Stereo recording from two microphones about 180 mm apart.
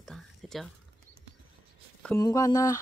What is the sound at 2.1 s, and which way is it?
Speech, 20° left (ahead or behind).